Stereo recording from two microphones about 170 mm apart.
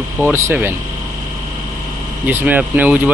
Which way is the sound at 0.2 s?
10° right (ahead or behind).